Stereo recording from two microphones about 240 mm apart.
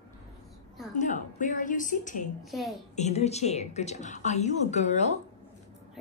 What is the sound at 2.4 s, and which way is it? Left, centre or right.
Speech, centre.